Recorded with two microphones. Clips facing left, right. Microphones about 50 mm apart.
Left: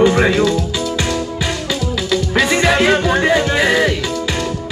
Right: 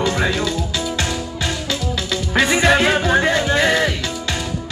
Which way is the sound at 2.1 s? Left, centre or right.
Centre.